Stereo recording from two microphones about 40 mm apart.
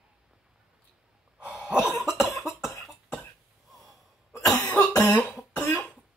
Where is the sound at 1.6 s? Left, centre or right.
Right.